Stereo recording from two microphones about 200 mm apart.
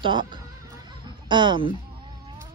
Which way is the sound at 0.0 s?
25° right (ahead or behind).